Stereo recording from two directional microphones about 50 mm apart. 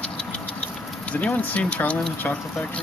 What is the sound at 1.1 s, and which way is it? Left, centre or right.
Speech, left.